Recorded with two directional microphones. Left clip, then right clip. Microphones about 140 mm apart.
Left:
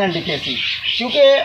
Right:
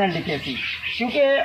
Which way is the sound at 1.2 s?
15° left (ahead or behind).